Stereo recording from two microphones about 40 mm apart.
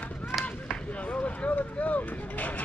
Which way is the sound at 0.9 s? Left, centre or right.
Left.